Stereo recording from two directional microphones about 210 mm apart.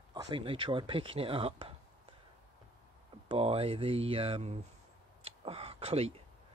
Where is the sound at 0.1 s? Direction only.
20° right (ahead or behind).